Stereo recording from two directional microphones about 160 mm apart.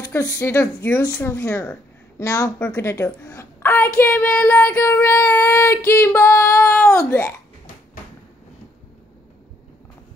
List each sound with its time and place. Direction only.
0.0 s speech: 20° left (ahead or behind)